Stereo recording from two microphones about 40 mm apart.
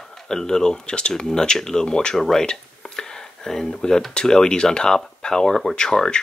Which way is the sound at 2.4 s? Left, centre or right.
Centre.